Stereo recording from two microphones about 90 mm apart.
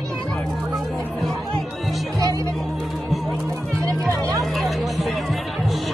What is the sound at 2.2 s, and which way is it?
Music, 40° right (ahead or behind).